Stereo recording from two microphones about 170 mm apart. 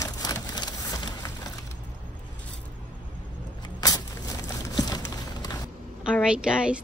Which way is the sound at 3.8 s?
20° left (ahead or behind).